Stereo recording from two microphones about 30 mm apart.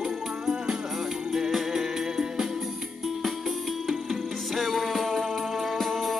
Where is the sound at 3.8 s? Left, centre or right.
Centre.